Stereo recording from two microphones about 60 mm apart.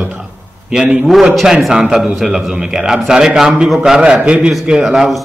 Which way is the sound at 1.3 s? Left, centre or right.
Centre.